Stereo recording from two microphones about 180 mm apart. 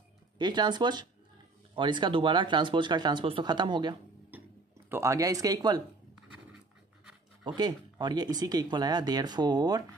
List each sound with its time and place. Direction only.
0.4 s speech: 25° right (ahead or behind)
4.3 s a sound: 10° right (ahead or behind)
4.8 s speech: 15° right (ahead or behind)
7.4 s speech: 25° right (ahead or behind)